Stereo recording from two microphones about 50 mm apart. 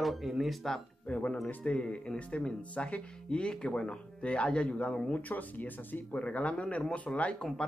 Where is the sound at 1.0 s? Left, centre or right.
Left.